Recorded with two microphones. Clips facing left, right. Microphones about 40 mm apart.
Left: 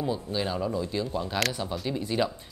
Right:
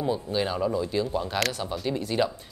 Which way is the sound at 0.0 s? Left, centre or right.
Centre.